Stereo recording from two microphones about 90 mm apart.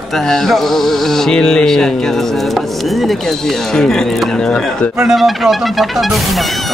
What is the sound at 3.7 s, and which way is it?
Speech, 5° left (ahead or behind).